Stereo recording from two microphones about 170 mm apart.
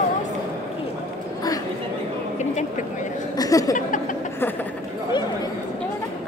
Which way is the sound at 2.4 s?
45° left (ahead or behind).